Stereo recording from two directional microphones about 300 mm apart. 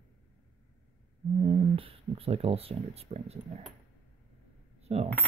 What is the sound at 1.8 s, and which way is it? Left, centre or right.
Speech, centre.